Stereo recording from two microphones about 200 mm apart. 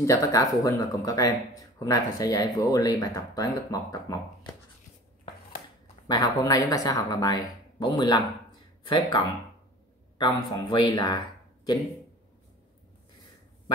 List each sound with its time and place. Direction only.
0.0 s speech: 15° left (ahead or behind)
6.0 s speech: 20° left (ahead or behind)